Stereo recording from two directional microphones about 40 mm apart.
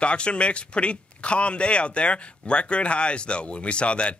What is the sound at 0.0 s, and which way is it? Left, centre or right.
Speech, left.